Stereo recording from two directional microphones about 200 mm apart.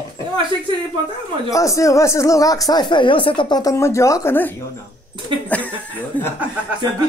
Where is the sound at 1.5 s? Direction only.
15° left (ahead or behind).